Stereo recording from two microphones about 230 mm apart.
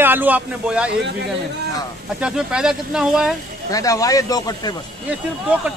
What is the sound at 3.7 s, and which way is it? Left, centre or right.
A man's voice, centre.